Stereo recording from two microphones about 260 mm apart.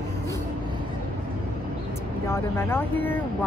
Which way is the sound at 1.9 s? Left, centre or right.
Centre.